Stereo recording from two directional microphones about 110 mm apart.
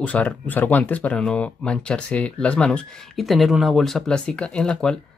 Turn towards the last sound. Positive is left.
turn(degrees=5)  # may be behind; listen again after turning